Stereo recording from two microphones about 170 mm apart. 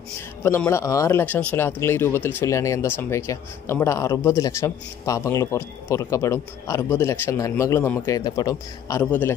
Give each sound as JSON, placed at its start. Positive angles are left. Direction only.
{"t": 0.4, "sound": "speech", "side_deg": 15}
{"t": 9.0, "sound": "speech", "side_deg": 10}